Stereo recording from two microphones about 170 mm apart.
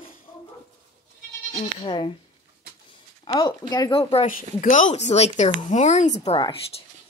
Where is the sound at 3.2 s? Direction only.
25° left (ahead or behind).